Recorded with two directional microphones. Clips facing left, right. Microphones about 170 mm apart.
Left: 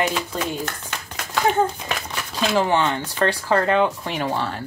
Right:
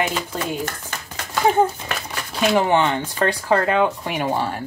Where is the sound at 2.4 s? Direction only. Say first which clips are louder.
Right 2 dB; 15° right (ahead or behind).